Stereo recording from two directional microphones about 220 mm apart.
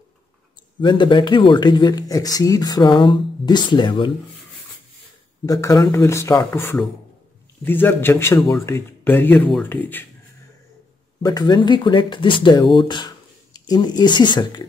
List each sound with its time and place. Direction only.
0.7 s speech: 20° left (ahead or behind)
5.4 s speech: 15° left (ahead or behind)
11.2 s speech: 20° left (ahead or behind)